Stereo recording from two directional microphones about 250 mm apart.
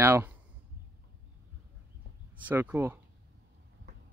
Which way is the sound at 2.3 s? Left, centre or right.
Centre.